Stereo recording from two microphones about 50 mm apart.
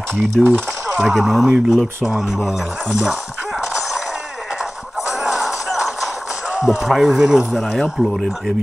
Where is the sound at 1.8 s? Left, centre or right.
Centre.